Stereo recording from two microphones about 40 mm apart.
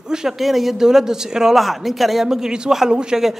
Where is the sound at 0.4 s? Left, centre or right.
Centre.